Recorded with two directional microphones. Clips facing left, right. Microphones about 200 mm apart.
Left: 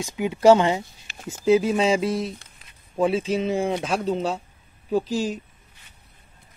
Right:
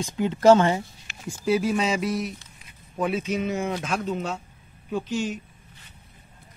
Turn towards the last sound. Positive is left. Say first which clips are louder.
# left 4 dB
turn(degrees=35)  # may be behind; listen again after turning